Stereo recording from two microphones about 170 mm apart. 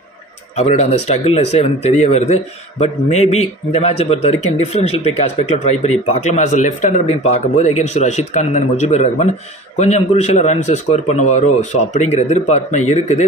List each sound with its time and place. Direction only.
0.6 s a man's voice: 40° left (ahead or behind)